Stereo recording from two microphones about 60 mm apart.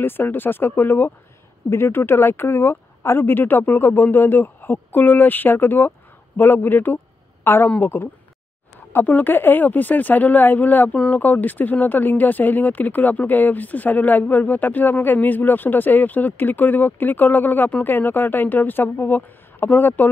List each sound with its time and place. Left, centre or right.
0.0 s speech: left